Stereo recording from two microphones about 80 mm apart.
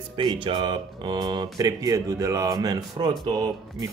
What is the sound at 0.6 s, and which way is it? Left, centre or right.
Mantra, right.